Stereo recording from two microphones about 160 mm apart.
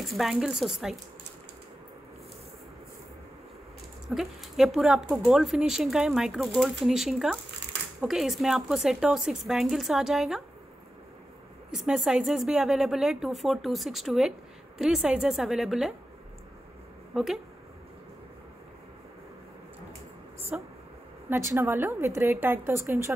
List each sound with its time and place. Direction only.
0.0 s a woman's voice: centre (ahead or behind)
4.1 s a woman's voice: centre (ahead or behind)
11.7 s a woman's voice: centre (ahead or behind)
17.1 s speech: 5° right (ahead or behind)
20.5 s a woman's voice: 10° right (ahead or behind)